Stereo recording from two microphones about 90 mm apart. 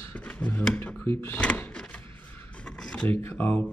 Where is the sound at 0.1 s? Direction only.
15° left (ahead or behind).